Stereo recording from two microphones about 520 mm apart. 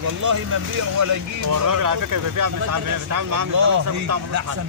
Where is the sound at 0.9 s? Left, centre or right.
Right.